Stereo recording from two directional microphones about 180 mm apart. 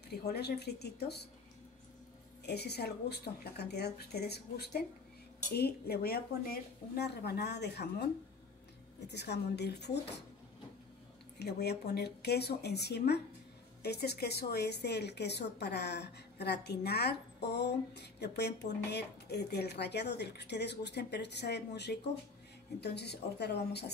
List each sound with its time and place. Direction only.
0.1 s speech: 65° left (ahead or behind)
2.4 s a woman's voice: 65° left (ahead or behind)
11.3 s a woman's voice: 65° left (ahead or behind)